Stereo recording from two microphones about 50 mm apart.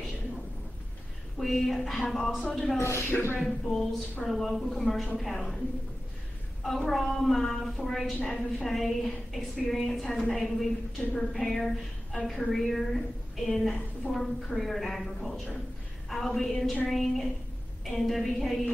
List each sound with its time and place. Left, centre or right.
1.4 s a woman's voice: centre
2.8 s speech: left
3.1 s speech: left
4.2 s a woman's voice: centre
6.6 s a woman's voice: centre